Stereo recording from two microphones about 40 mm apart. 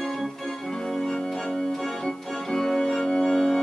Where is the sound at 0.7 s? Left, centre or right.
Centre.